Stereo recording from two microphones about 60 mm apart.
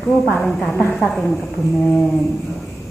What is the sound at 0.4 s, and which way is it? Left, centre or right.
Speech, centre.